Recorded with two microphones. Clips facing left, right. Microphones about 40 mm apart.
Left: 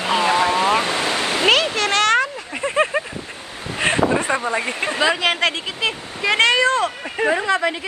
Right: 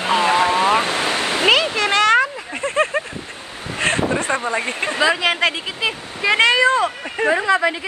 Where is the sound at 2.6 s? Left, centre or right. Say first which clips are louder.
Even; centre.